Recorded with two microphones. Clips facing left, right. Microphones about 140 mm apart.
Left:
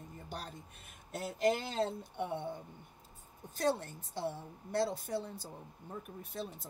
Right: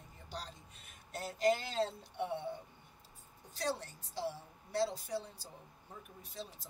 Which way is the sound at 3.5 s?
50° left (ahead or behind).